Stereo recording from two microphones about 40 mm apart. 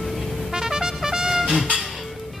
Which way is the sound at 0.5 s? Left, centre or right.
Centre.